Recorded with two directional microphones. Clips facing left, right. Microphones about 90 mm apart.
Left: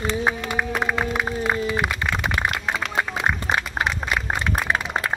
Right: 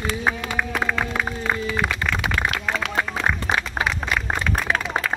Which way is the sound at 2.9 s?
10° left (ahead or behind).